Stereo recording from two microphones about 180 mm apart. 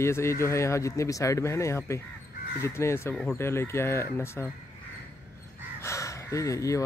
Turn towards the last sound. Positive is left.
turn(degrees=15)  # may be behind; listen again after turning